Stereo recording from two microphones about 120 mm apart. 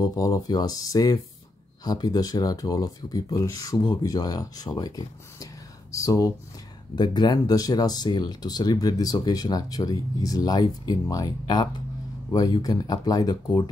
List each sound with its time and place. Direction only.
0.0 s speech: 30° left (ahead or behind)